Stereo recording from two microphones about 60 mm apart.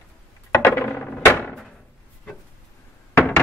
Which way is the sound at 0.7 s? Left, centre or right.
Left.